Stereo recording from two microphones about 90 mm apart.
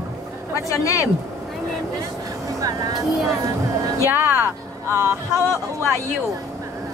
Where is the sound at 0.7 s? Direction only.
35° left (ahead or behind).